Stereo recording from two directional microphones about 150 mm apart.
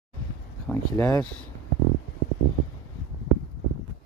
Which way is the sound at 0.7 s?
10° left (ahead or behind).